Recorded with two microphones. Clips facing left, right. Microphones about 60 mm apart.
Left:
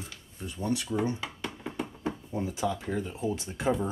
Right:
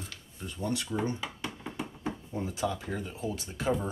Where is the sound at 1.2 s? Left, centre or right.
Centre.